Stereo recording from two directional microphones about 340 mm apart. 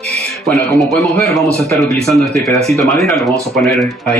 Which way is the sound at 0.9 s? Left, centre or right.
Centre.